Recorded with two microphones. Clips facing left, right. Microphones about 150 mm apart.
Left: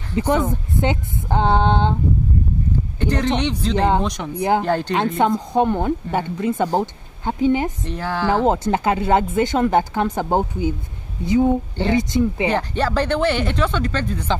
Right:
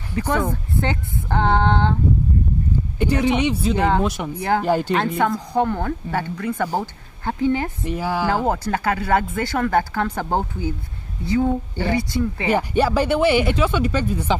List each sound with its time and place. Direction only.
0.1 s a woman's voice: 15° left (ahead or behind)
3.0 s speech: 10° right (ahead or behind)
4.4 s a woman's voice: 15° left (ahead or behind)
4.6 s speech: 10° right (ahead or behind)
4.9 s speech: 20° left (ahead or behind)
7.8 s speech: 10° right (ahead or behind)
8.5 s a woman's voice: 20° left (ahead or behind)
12.4 s speech: 10° right (ahead or behind)